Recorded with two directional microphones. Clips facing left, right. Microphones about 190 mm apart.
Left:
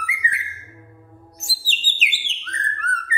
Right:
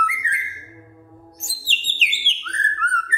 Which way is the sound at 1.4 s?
5° left (ahead or behind).